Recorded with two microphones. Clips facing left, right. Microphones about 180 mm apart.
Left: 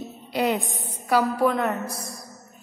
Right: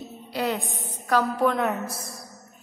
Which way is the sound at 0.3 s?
15° left (ahead or behind).